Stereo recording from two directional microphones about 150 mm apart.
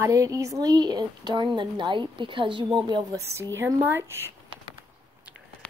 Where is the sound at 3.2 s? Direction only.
20° right (ahead or behind).